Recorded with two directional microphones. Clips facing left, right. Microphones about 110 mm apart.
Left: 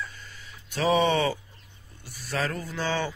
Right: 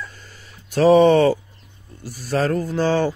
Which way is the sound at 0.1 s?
45° right (ahead or behind).